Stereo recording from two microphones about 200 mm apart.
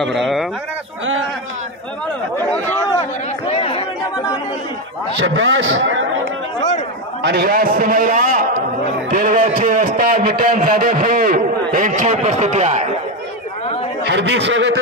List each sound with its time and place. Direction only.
0.0 s speech: centre (ahead or behind)
2.9 s chatter: 25° left (ahead or behind)
5.2 s a man's voice: 70° right (ahead or behind)
7.2 s a man's voice: 50° right (ahead or behind); by 12.8 s 35° right (ahead or behind)
14.0 s speech: 60° right (ahead or behind)